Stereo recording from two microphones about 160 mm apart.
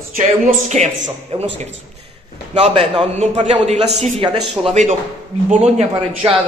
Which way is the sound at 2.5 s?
40° right (ahead or behind).